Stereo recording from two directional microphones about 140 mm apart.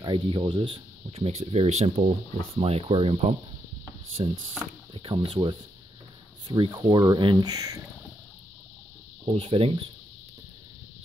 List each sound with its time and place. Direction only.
0.0 s speech: 35° right (ahead or behind)
9.2 s speech: 40° right (ahead or behind)